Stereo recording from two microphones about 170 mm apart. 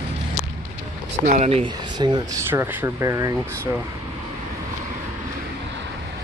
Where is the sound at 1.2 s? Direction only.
40° right (ahead or behind).